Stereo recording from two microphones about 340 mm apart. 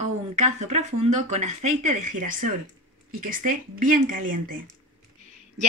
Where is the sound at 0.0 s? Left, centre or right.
Centre.